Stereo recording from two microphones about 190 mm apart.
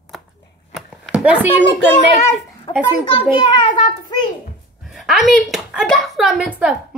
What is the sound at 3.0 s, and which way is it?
A child's voice, 25° left (ahead or behind).